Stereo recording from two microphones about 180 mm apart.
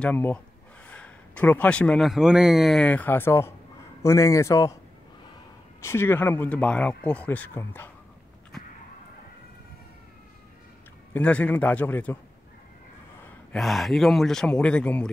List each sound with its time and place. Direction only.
0.0 s speech: 10° left (ahead or behind)
5.8 s speech: 15° left (ahead or behind)
11.1 s speech: 10° left (ahead or behind)
13.5 s speech: centre (ahead or behind)